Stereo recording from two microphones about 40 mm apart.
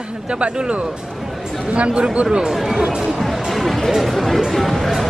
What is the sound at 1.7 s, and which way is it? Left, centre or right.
Speech, right.